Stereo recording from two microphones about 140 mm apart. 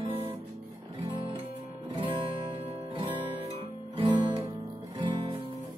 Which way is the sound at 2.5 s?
45° right (ahead or behind).